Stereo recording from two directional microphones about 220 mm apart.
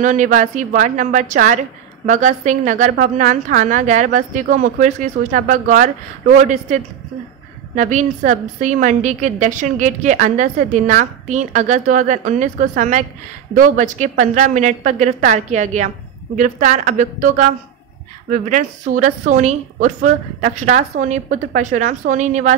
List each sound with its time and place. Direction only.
0.0 s a woman's voice: 35° right (ahead or behind)